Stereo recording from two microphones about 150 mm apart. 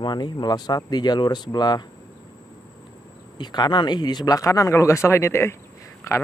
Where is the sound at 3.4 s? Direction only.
30° left (ahead or behind).